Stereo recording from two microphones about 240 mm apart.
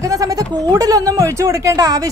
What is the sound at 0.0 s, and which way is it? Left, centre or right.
Speech, centre.